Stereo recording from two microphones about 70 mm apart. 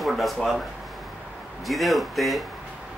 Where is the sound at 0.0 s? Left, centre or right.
Centre.